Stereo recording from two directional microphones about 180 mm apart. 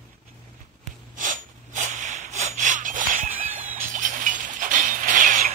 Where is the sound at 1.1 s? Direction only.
45° right (ahead or behind).